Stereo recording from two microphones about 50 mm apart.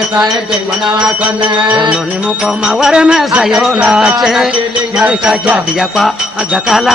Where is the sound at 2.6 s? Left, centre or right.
Centre.